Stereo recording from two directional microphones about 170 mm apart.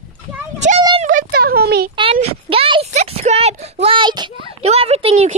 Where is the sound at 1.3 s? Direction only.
65° right (ahead or behind).